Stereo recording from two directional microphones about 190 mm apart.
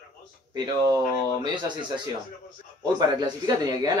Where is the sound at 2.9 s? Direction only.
20° right (ahead or behind).